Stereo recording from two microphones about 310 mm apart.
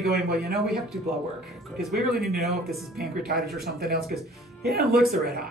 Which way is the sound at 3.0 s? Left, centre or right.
Right.